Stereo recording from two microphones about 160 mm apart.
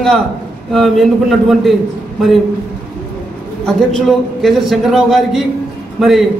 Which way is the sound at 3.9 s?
Centre (ahead or behind).